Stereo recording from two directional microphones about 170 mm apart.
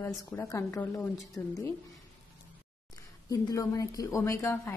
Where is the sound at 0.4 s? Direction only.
15° left (ahead or behind).